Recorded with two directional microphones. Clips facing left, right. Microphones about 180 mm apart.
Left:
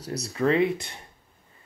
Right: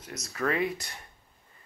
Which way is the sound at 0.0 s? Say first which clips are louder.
Left 9 dB; 35° left (ahead or behind).